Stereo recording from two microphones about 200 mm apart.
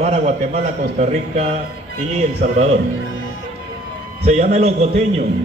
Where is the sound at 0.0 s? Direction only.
35° right (ahead or behind).